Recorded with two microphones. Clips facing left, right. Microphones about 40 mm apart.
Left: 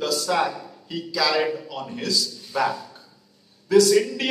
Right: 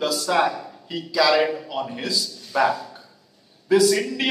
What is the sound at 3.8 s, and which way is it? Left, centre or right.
Speech, centre.